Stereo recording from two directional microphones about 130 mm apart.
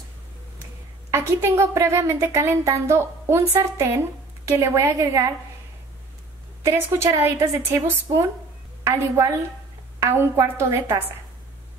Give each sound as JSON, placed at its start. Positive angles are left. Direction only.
{"t": 1.1, "sound": "a woman's voice", "side_deg": -20}
{"t": 6.6, "sound": "a woman's voice", "side_deg": -20}